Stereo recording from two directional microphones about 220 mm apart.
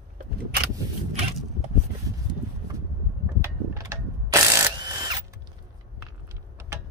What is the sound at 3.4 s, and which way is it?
Ratchet, 15° right (ahead or behind).